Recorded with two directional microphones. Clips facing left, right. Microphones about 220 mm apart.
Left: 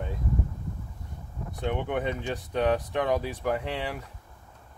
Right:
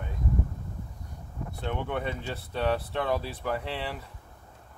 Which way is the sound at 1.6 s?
15° left (ahead or behind).